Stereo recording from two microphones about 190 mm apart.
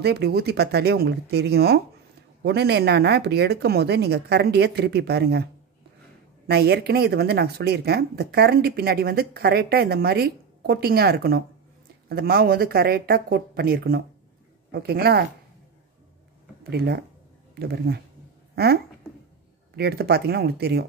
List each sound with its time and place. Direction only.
0.0 s speech: 60° right (ahead or behind)
16.7 s speech: 60° right (ahead or behind)
18.5 s a sound: 55° right (ahead or behind)
19.7 s speech: 60° right (ahead or behind)